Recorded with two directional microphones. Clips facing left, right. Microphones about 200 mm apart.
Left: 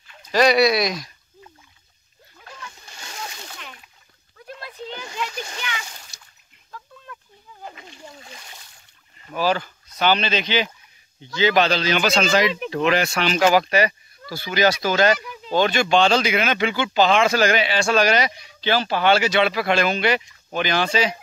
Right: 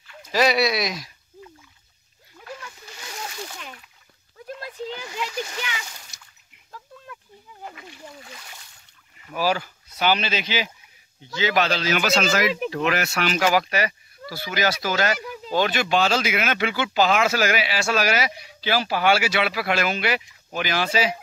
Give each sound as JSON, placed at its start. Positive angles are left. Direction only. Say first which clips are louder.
{"t": 0.3, "sound": "speech", "louder": "left 4 dB", "side_deg": -5}
{"t": 5.1, "sound": "splash", "louder": "right 1 dB", "side_deg": -25}
{"t": 9.3, "sound": "speech", "louder": "left 2 dB", "side_deg": -10}
{"t": 11.4, "sound": "speech", "louder": "left 4 dB", "side_deg": 30}
{"t": 11.7, "sound": "speech", "louder": "left 2 dB", "side_deg": -5}
{"t": 12.7, "sound": "speech", "louder": "left 4 dB", "side_deg": 30}
{"t": 15.5, "sound": "speech", "louder": "left 3 dB", "side_deg": -5}